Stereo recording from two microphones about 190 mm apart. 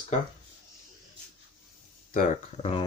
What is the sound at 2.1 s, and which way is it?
Speech, 35° left (ahead or behind).